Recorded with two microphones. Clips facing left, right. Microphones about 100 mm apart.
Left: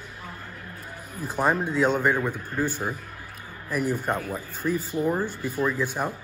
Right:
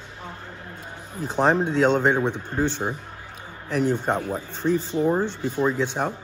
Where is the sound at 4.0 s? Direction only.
25° right (ahead or behind).